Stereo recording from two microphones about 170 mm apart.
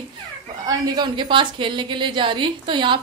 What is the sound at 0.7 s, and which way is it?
A woman's voice, 25° right (ahead or behind).